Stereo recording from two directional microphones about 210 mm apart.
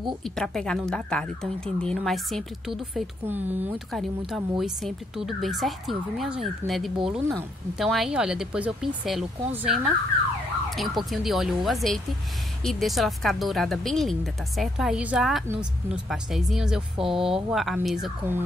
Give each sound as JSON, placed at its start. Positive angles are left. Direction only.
{"t": 0.2, "sound": "speech", "side_deg": 0}